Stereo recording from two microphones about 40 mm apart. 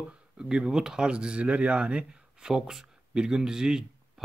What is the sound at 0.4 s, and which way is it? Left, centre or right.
Speech, centre.